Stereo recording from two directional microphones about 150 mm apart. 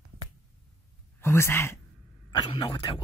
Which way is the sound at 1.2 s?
15° left (ahead or behind).